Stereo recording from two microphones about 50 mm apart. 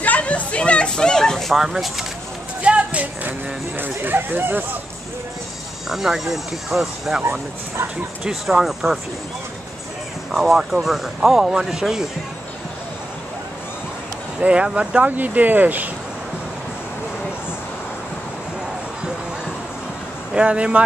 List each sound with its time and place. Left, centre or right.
0.0 s children playing: left; by 1.6 s centre
1.6 s speech: centre
2.6 s speech: right
5.9 s speech: centre
8.3 s speech: centre
10.3 s speech: centre
14.4 s speech: right
15.0 s speech: right
20.3 s speech: right